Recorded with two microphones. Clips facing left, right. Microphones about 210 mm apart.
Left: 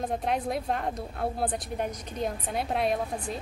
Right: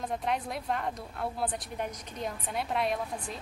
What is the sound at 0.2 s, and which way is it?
A woman's voice, 40° left (ahead or behind).